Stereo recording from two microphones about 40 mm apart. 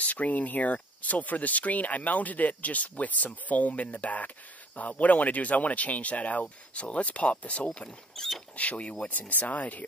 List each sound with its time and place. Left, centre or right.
0.0 s speech: left
8.2 s speech: centre
8.5 s speech: left